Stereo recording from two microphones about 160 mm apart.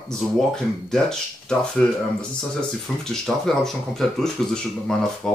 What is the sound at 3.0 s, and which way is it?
Speech, 5° left (ahead or behind).